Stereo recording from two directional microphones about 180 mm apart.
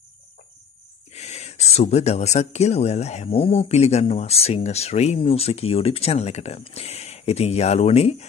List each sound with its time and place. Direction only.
1.1 s speech: 35° left (ahead or behind)